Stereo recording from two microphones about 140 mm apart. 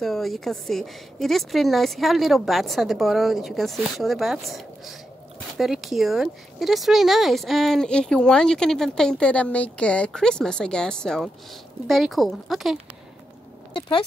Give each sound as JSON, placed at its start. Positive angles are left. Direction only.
{"t": 0.0, "sound": "speech", "side_deg": 0}
{"t": 13.7, "sound": "speech", "side_deg": 35}